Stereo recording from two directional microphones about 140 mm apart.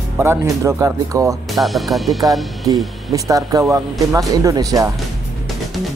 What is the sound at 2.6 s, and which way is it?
Speech, 25° right (ahead or behind).